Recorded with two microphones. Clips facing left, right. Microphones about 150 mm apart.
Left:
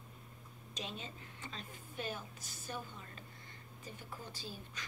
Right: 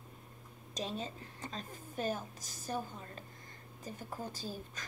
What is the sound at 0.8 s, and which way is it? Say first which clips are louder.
A woman's voice: right 6 dB; 40° right (ahead or behind).